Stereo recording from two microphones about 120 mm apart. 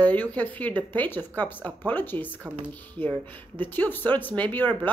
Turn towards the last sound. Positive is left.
turn(degrees=15)  # may be behind; listen again after turning